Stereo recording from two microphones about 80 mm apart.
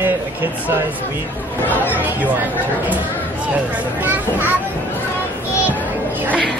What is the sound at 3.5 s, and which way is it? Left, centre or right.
Speech, right.